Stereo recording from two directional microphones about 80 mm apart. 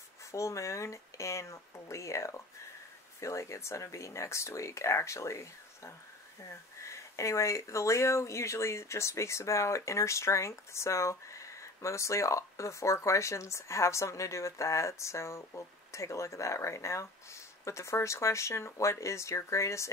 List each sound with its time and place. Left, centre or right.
0.3 s speech: left